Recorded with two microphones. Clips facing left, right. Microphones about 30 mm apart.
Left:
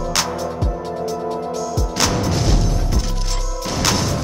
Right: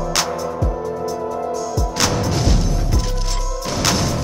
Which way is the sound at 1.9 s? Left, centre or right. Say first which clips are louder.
Left 1 dB; centre.